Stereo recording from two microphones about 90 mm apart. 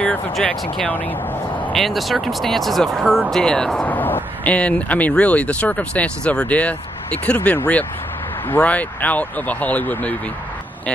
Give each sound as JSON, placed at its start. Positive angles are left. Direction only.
{"t": 0.0, "sound": "speech", "side_deg": 15}
{"t": 1.7, "sound": "speech", "side_deg": 0}
{"t": 3.8, "sound": "speech", "side_deg": 20}